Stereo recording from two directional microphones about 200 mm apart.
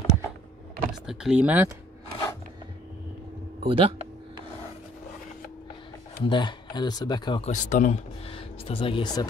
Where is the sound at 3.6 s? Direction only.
25° right (ahead or behind).